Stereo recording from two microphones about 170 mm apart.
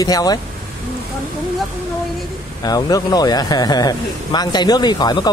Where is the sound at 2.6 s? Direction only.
20° left (ahead or behind).